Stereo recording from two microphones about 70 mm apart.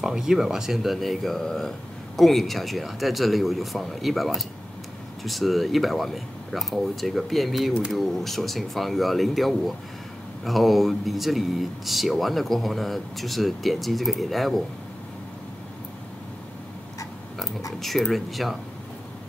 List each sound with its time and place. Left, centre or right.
0.0 s speech: centre
17.7 s speech: centre